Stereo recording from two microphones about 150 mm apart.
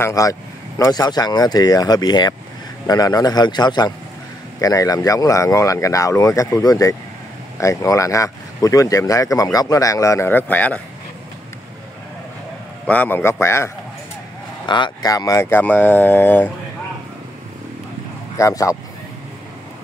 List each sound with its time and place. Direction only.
0.0 s speech: 20° left (ahead or behind)
12.8 s speech: 10° left (ahead or behind)
14.7 s speech: 30° left (ahead or behind); by 16.5 s 10° left (ahead or behind)
18.4 s speech: 20° left (ahead or behind)